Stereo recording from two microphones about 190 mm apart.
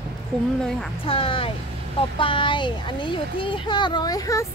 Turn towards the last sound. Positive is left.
turn(degrees=20)  # may be behind; listen again after turning